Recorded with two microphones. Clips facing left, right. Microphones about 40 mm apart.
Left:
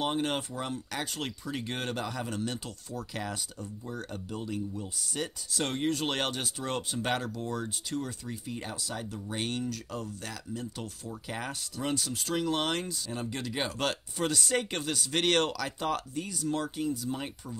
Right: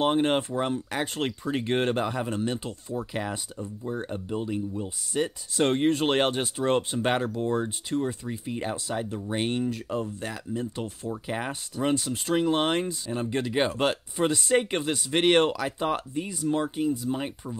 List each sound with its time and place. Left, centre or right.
0.0 s speech: right